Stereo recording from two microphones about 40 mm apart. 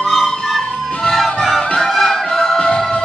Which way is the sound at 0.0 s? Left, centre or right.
Centre.